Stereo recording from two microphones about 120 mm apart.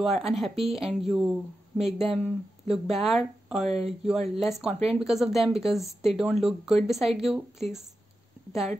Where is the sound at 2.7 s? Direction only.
Centre (ahead or behind).